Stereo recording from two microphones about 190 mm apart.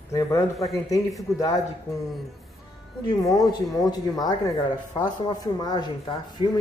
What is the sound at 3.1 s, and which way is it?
Speech, 20° left (ahead or behind).